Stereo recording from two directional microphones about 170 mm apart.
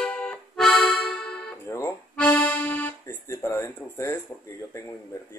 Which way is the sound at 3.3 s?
15° left (ahead or behind).